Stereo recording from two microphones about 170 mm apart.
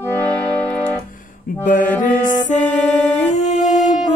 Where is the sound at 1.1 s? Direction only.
50° left (ahead or behind).